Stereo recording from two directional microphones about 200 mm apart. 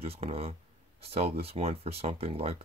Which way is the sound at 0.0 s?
30° right (ahead or behind).